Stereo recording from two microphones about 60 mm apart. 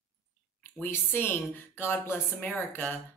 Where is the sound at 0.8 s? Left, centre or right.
Left.